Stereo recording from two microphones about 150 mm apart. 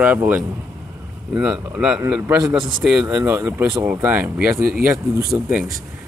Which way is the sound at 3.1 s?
20° right (ahead or behind).